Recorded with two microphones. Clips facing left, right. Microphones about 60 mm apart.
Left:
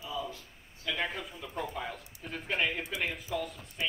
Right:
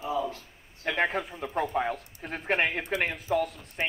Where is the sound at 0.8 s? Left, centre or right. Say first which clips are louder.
Right 7 dB; right.